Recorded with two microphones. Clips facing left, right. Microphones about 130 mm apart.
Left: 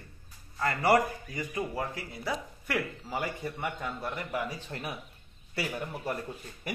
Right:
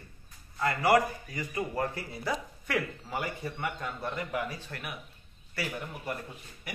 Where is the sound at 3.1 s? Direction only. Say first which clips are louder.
Left 1 dB; 15° left (ahead or behind).